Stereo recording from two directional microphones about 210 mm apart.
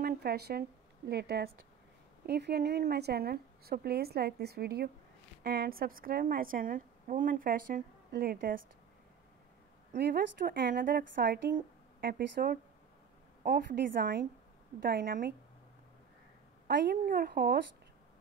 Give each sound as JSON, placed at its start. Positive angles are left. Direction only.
{"t": 0.0, "sound": "a woman's voice", "side_deg": -50}
{"t": 9.9, "sound": "a woman's voice", "side_deg": -45}
{"t": 16.6, "sound": "a woman's voice", "side_deg": -40}